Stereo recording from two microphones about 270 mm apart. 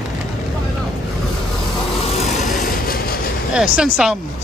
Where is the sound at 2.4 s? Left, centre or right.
Left.